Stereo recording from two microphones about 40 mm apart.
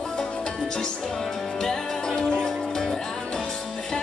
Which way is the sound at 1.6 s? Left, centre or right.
Centre.